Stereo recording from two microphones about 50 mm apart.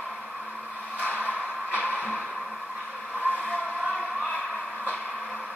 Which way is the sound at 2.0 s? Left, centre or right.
Left.